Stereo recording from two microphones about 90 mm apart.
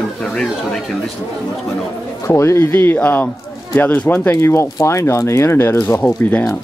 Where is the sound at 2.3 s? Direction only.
30° left (ahead or behind).